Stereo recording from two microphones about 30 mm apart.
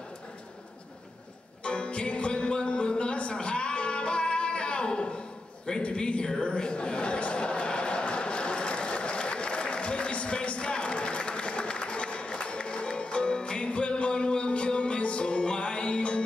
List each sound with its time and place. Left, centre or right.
1.6 s music: left
5.8 s speech: left
6.4 s chuckle: left